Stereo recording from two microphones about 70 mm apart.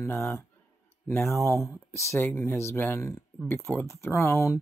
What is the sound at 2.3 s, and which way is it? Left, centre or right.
Speech, left.